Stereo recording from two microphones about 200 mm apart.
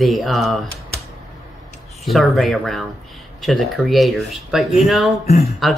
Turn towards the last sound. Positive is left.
turn(degrees=35)  # may be behind; listen again after turning